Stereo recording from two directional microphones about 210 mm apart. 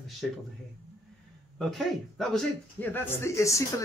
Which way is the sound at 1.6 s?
Centre (ahead or behind).